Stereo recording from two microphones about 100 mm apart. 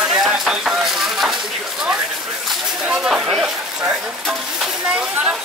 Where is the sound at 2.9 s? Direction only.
5° right (ahead or behind).